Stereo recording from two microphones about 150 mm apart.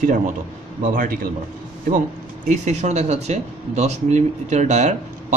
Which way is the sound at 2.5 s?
50° right (ahead or behind).